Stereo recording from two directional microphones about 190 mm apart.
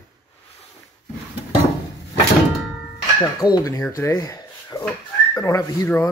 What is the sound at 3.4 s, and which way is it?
Speech, 15° left (ahead or behind).